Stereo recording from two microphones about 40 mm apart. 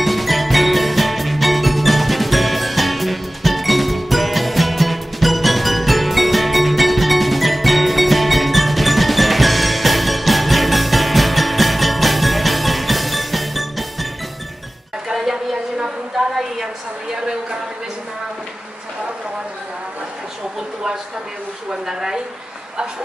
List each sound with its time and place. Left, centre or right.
0.0 s music: centre
15.0 s music: centre
21.6 s a sound: centre